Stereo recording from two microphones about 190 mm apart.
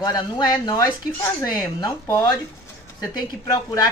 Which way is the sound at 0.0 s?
20° left (ahead or behind).